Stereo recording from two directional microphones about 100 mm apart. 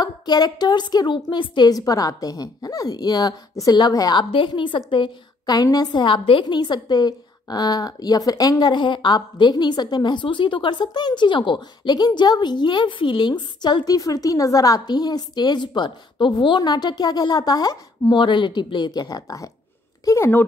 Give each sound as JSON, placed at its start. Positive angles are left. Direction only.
{"t": 0.0, "sound": "a woman's voice", "side_deg": 40}